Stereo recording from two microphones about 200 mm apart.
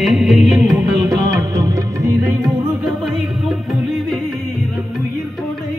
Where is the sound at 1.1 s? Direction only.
15° right (ahead or behind).